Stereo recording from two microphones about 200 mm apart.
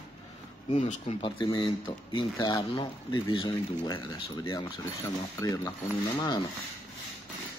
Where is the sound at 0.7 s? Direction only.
35° left (ahead or behind).